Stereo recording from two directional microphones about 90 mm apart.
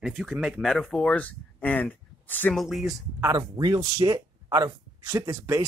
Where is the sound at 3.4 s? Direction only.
45° right (ahead or behind).